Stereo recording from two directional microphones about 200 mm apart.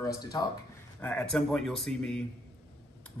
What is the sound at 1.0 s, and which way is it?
Speech, 5° left (ahead or behind).